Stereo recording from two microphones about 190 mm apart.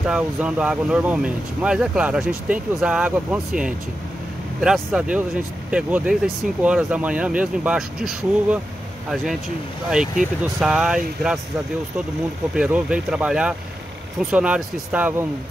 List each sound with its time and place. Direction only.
0.0 s speech: 5° right (ahead or behind)
10.4 s speech: 5° right (ahead or behind)
12.5 s speech: 5° right (ahead or behind)